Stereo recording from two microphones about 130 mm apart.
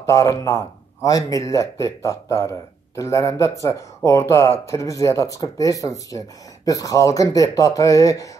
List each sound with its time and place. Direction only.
0.0 s speech: 25° left (ahead or behind)